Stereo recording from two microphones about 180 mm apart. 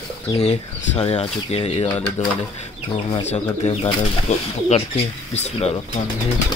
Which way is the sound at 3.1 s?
35° left (ahead or behind).